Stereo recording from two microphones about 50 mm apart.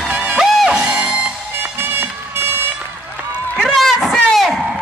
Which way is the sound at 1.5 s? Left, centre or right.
Right.